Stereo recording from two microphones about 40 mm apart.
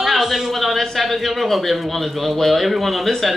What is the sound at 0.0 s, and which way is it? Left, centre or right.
A man's voice, centre.